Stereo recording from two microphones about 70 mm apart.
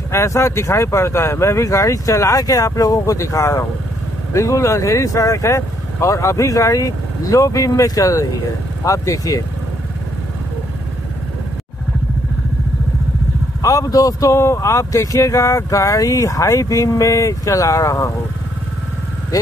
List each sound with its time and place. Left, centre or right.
0.1 s speech: left
13.6 s speech: left